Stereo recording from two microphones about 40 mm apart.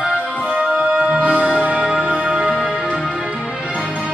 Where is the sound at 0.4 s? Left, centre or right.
Right.